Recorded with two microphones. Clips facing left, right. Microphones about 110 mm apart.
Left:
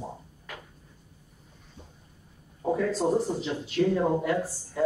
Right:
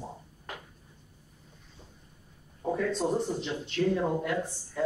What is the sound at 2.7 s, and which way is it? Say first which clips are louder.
Speech: left 3 dB; 5° left (ahead or behind).